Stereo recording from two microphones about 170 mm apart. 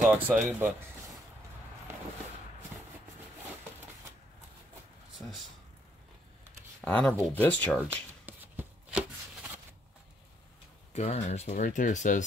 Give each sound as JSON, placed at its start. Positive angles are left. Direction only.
{"t": 0.1, "sound": "speech", "side_deg": -10}
{"t": 6.8, "sound": "speech", "side_deg": 5}
{"t": 8.3, "sound": "a sound", "side_deg": -10}
{"t": 10.9, "sound": "speech", "side_deg": 40}